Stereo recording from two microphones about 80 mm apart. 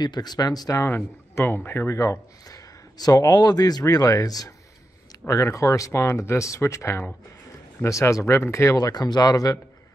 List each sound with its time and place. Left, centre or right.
0.0 s speech: left
0.7 s speech: left
2.0 s speech: left
8.7 s speech: left